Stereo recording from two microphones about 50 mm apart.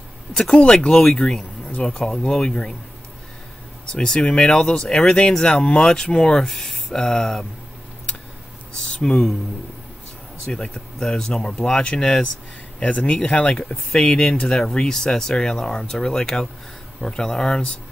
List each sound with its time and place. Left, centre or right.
0.6 s speech: centre
3.9 s speech: centre
8.8 s speech: centre
10.4 s speech: centre
12.8 s speech: left